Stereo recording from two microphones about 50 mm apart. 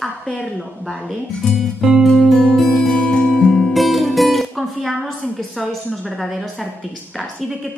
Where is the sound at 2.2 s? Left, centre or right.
Centre.